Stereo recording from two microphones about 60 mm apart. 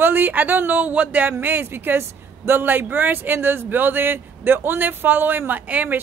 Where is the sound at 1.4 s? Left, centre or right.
Right.